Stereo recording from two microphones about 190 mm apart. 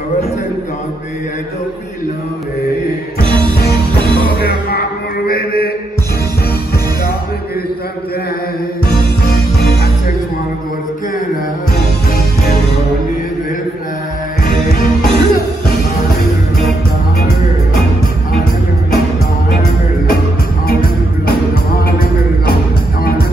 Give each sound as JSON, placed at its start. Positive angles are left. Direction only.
{"t": 3.5, "sound": "music", "side_deg": 55}
{"t": 9.2, "sound": "music", "side_deg": 55}
{"t": 14.4, "sound": "music", "side_deg": 50}